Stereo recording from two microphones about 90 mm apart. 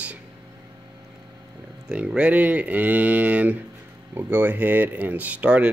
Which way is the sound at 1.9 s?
15° right (ahead or behind).